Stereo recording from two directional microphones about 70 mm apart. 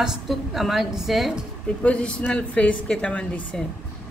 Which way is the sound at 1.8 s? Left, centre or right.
Centre.